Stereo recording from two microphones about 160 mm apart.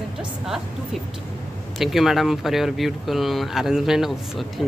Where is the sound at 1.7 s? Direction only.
Centre (ahead or behind).